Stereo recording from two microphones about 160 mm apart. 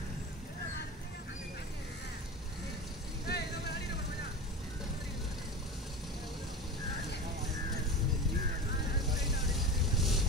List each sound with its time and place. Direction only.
3.3 s vehicle: 90° left
9.6 s vehicle: centre (ahead or behind)